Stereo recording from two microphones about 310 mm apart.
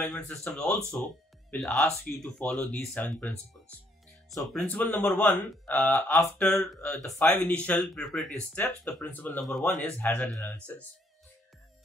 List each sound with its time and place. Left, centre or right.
0.0 s speech: centre